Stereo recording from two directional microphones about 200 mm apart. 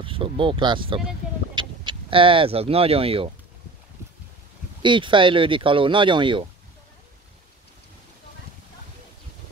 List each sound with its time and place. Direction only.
0.0 s speech: 25° right (ahead or behind)
4.8 s speech: 25° right (ahead or behind)